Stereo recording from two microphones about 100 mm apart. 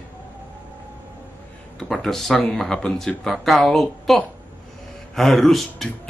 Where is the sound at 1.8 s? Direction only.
5° left (ahead or behind).